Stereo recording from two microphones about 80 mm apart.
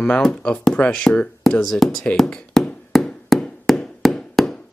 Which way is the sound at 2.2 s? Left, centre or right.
Centre.